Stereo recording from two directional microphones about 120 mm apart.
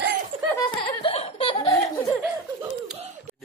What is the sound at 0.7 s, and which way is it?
Laughter, 50° left (ahead or behind).